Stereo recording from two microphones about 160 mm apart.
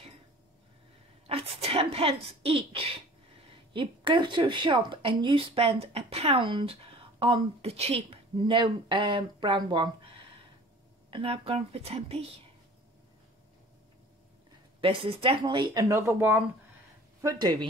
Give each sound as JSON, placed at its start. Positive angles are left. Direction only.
{"t": 1.2, "sound": "a woman's voice", "side_deg": -35}
{"t": 11.1, "sound": "a woman's voice", "side_deg": -35}
{"t": 14.8, "sound": "speech", "side_deg": -35}